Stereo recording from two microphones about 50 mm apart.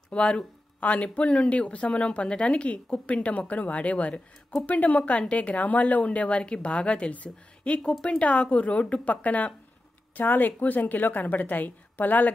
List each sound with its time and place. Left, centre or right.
0.1 s a woman's voice: left